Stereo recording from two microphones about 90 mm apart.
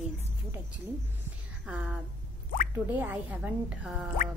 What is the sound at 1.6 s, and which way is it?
A woman's voice, 10° right (ahead or behind).